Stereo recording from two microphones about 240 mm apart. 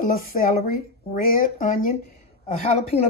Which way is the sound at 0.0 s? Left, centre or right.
Left.